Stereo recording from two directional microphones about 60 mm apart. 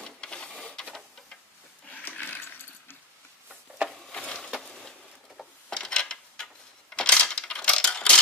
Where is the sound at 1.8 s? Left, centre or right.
Left.